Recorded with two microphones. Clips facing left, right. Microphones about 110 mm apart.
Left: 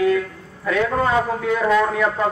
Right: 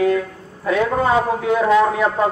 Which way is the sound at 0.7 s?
20° right (ahead or behind).